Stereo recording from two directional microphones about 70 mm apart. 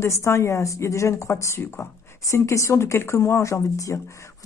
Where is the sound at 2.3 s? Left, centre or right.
Left.